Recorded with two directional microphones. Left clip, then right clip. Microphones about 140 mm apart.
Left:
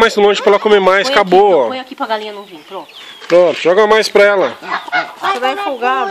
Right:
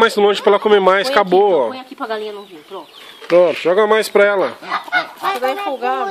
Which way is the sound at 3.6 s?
5° left (ahead or behind).